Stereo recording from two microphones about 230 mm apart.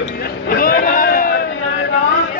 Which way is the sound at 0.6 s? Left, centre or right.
Left.